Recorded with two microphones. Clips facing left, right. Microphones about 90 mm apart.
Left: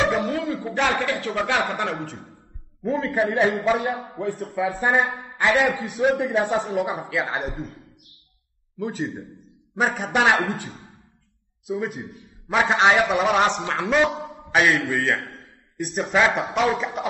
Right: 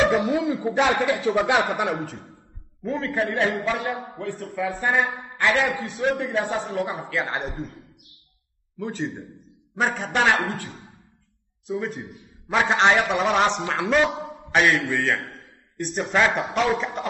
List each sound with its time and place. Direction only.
0.2 s a sound: 10° right (ahead or behind)
0.5 s a man's voice: 15° right (ahead or behind)
1.8 s a man's voice: 5° right (ahead or behind)
2.8 s a man's voice: 10° left (ahead or behind)
8.7 s a man's voice: 5° left (ahead or behind)
11.6 s a man's voice: 5° left (ahead or behind)